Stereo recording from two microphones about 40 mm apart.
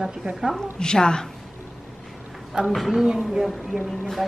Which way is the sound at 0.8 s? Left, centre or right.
Centre.